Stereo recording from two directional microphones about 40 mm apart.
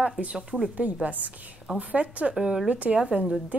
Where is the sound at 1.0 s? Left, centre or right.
Right.